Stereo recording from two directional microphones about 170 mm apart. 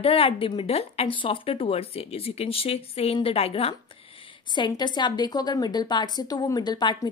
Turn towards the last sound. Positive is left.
turn(degrees=25)  # may be behind; listen again after turning